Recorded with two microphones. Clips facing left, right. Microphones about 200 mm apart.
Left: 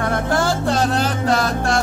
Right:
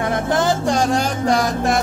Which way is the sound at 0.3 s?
20° right (ahead or behind).